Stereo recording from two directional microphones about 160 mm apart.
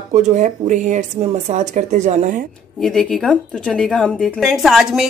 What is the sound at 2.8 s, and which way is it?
A woman's voice, centre (ahead or behind).